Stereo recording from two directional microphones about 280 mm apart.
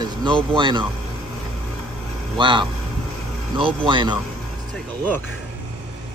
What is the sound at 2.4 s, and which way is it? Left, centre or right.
Speech, centre.